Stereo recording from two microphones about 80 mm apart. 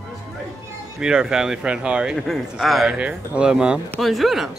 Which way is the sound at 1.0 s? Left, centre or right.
Centre.